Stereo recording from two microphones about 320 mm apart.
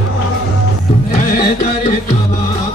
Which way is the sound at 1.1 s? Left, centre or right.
Left.